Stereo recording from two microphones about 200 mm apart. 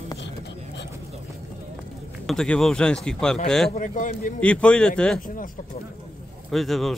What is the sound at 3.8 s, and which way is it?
Speech, 40° left (ahead or behind).